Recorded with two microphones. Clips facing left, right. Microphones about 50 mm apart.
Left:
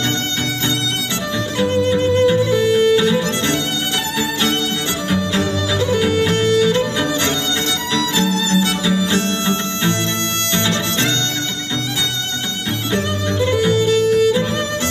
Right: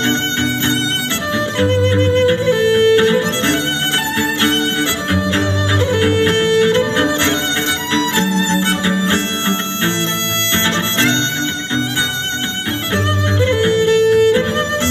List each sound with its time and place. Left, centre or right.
0.0 s music: right
12.9 s music: right